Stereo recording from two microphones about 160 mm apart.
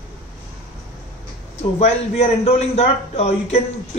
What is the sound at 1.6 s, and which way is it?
A man's voice, 45° left (ahead or behind).